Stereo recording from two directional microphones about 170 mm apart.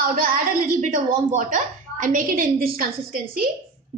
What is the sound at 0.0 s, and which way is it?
A woman's voice, 55° right (ahead or behind).